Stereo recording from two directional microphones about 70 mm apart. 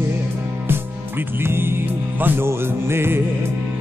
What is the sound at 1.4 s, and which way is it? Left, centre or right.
Music, right.